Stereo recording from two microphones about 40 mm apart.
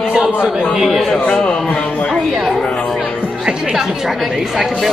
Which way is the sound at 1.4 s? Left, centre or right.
Left.